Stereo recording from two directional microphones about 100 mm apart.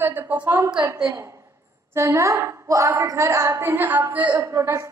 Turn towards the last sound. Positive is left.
turn(degrees=-30)  # may be behind; listen again after turning